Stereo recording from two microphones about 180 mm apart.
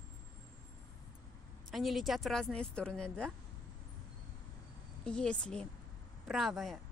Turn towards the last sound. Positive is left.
turn(degrees=0)  # may be behind; listen again after turning